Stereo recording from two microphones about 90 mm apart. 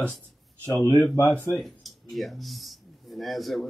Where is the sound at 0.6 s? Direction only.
35° right (ahead or behind).